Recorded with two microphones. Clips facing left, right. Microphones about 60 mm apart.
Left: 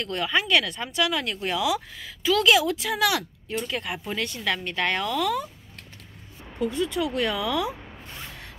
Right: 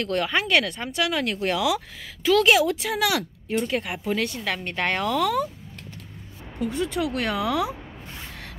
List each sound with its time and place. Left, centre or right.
0.0 s speech: right
3.4 s speech: right
6.6 s speech: right